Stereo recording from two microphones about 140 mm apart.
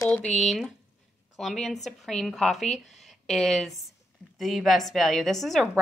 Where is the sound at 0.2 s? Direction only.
55° left (ahead or behind).